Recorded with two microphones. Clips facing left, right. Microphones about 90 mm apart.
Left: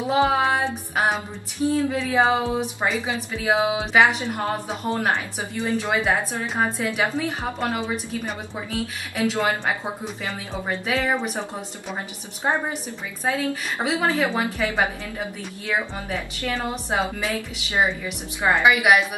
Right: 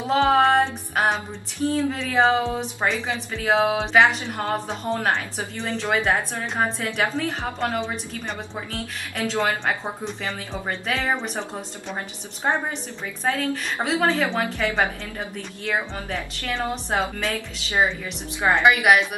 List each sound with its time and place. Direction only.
0.0 s a woman's voice: 10° left (ahead or behind)
13.2 s a woman's voice: 10° left (ahead or behind)
17.2 s a woman's voice: 10° left (ahead or behind)